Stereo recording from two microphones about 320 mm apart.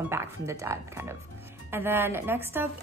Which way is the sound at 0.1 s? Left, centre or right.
Centre.